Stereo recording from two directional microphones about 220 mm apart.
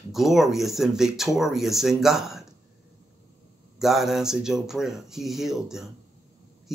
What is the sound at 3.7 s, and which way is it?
Speech, centre (ahead or behind).